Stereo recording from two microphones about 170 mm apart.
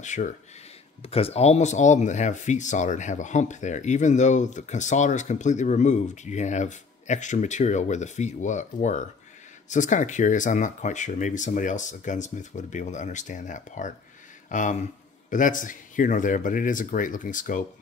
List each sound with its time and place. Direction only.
0.0 s speech: 45° left (ahead or behind)
1.0 s speech: 35° left (ahead or behind); by 17.6 s 50° left (ahead or behind)